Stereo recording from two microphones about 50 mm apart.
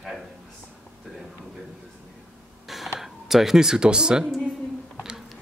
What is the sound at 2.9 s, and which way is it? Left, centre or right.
Speech, centre.